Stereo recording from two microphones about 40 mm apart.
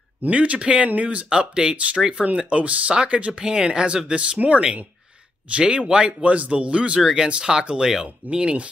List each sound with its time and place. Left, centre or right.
0.2 s speech: right
2.3 s speech: right
3.4 s speech: centre
6.2 s speech: right